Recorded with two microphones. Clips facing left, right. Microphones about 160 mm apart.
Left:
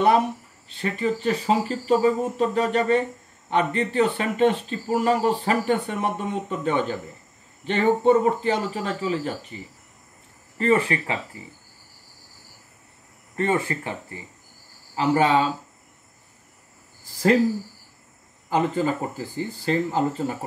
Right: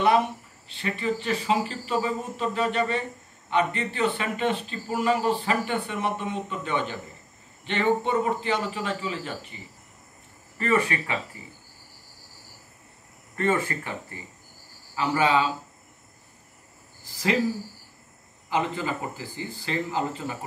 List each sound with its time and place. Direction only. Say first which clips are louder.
0.7 s speech: left 3 dB; 40° left (ahead or behind)
10.6 s speech: left 4 dB; 30° left (ahead or behind)
13.4 s speech: left 2 dB; 25° left (ahead or behind)
15.0 s speech: left 3 dB; 40° left (ahead or behind)
18.5 s speech: left 5 dB; 40° left (ahead or behind)